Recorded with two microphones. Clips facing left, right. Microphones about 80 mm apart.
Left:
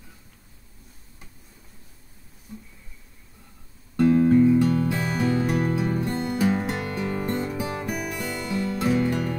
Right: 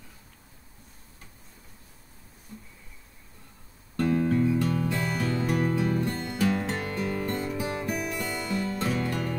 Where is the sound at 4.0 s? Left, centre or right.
Centre.